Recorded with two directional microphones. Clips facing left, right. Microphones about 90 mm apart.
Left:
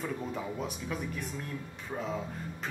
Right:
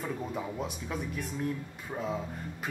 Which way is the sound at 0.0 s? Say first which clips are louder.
Right 1 dB; centre (ahead or behind).